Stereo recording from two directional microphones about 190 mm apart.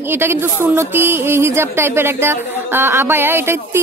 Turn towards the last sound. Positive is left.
turn(degrees=-10)  # may be behind; listen again after turning